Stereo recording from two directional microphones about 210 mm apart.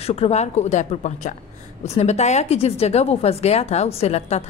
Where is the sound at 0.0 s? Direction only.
30° left (ahead or behind).